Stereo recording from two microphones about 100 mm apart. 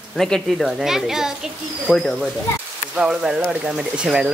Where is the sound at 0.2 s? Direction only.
5° left (ahead or behind).